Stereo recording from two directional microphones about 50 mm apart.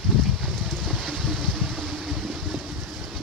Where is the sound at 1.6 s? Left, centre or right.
Centre.